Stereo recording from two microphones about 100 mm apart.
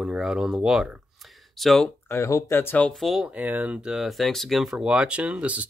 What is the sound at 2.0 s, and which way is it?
Speech, 30° left (ahead or behind).